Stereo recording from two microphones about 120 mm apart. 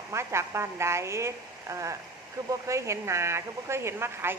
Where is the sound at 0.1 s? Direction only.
20° right (ahead or behind).